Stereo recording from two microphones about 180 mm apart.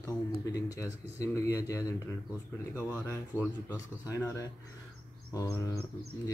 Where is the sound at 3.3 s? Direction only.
15° left (ahead or behind).